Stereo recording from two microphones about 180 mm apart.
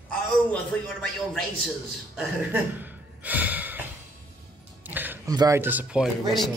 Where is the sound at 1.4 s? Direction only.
Centre (ahead or behind).